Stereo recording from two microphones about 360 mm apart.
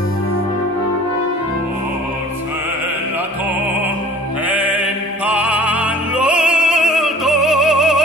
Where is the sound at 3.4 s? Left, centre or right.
Centre.